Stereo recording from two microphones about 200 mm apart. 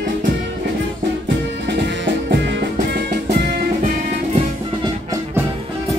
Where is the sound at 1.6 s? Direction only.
60° right (ahead or behind).